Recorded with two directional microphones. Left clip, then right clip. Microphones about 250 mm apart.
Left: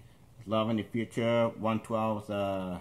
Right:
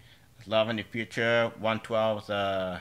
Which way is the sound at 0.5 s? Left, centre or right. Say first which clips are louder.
Right 4 dB; centre.